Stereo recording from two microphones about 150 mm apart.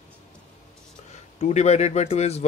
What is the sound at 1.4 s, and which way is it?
Speech, 50° left (ahead or behind).